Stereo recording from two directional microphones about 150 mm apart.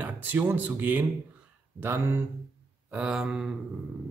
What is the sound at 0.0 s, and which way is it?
Speech, 10° right (ahead or behind).